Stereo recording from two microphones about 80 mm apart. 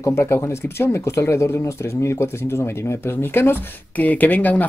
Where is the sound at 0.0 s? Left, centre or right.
Left.